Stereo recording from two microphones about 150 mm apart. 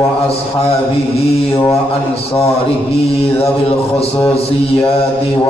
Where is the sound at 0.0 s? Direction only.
40° left (ahead or behind).